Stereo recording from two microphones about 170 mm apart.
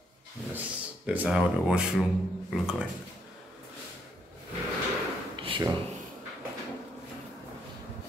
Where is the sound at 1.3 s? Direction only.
5° right (ahead or behind).